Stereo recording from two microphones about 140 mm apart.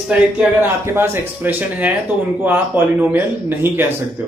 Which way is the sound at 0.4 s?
15° right (ahead or behind).